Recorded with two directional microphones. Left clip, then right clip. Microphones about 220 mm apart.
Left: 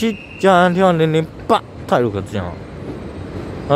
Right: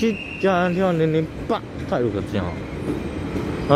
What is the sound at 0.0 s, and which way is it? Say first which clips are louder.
Speech: left 5 dB; 25° left (ahead or behind).